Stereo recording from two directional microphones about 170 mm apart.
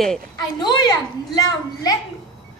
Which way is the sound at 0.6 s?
25° left (ahead or behind).